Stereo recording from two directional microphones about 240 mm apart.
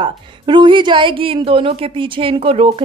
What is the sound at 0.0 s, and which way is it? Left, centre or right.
A woman's voice, centre.